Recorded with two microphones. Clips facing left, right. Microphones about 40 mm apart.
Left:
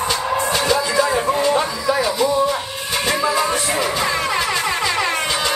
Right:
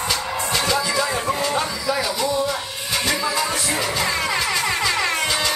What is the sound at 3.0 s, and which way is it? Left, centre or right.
Music, left.